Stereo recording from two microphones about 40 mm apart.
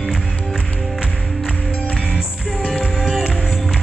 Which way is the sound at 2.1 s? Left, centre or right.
Right.